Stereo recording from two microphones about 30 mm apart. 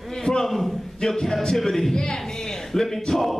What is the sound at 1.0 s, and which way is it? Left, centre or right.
Speech, left.